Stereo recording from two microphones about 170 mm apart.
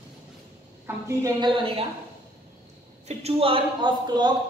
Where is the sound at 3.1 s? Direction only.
35° right (ahead or behind).